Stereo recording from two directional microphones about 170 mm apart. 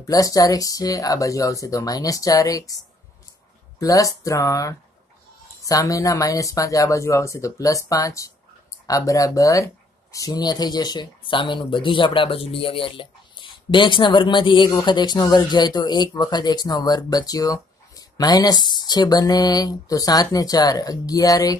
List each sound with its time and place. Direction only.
0.0 s speech: 20° left (ahead or behind)
3.8 s speech: 20° left (ahead or behind)